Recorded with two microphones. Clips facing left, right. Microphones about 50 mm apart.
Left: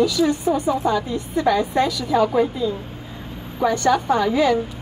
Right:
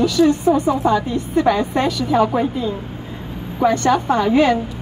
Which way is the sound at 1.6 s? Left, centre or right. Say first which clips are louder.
Right 1 dB; right.